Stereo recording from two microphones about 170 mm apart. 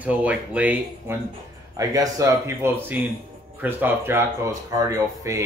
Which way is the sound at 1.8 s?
20° right (ahead or behind).